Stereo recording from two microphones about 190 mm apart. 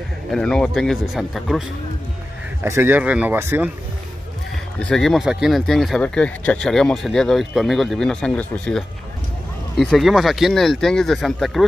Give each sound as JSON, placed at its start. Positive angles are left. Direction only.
{"t": 0.3, "sound": "speech", "side_deg": 5}
{"t": 2.6, "sound": "speech", "side_deg": -10}
{"t": 4.7, "sound": "speech", "side_deg": 5}